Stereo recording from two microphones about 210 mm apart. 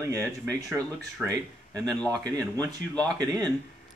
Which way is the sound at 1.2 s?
15° right (ahead or behind).